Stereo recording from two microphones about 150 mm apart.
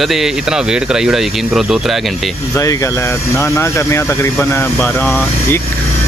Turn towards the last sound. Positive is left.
turn(degrees=15)  # may be behind; listen again after turning